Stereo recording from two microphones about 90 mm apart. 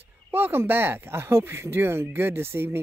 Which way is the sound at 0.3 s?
25° right (ahead or behind).